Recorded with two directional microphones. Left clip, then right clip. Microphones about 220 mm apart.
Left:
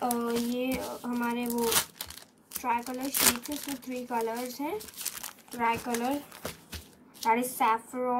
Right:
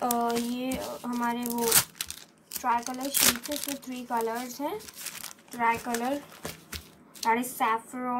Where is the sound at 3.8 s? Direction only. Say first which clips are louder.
Even; 5° right (ahead or behind).